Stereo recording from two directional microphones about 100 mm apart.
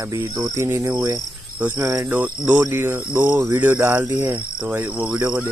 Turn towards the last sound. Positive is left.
turn(degrees=-20)  # may be behind; listen again after turning